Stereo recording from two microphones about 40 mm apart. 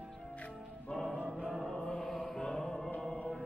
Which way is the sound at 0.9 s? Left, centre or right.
Left.